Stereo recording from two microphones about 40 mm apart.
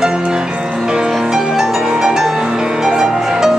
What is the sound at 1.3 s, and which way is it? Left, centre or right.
Music, centre.